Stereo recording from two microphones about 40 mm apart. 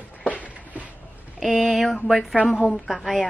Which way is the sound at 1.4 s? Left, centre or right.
Centre.